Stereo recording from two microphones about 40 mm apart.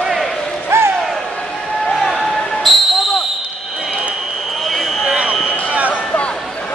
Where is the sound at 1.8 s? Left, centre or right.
Centre.